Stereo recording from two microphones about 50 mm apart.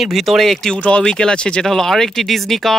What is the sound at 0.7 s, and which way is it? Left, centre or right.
Speech, left.